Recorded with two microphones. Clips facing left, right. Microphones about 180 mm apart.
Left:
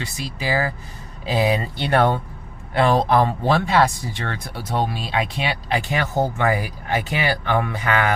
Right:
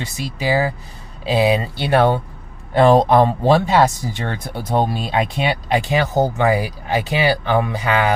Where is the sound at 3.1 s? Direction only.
20° right (ahead or behind).